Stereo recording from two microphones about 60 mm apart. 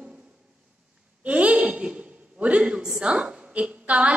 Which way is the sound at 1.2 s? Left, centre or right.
Right.